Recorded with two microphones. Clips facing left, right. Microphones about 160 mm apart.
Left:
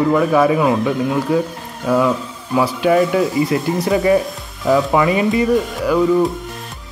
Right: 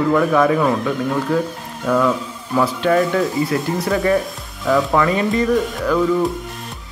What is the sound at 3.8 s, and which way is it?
Speech, 15° left (ahead or behind).